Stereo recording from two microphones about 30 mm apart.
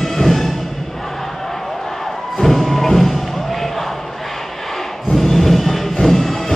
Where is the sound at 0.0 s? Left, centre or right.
Centre.